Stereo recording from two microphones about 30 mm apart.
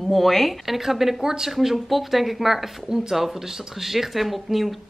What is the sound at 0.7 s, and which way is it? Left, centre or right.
Speech, centre.